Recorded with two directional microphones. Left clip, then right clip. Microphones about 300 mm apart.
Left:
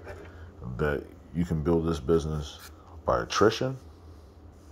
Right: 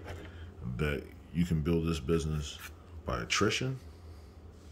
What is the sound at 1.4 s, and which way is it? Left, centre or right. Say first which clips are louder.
A man's voice: left 6 dB; centre.